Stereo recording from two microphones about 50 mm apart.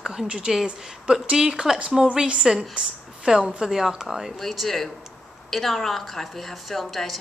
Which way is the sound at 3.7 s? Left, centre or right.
Centre.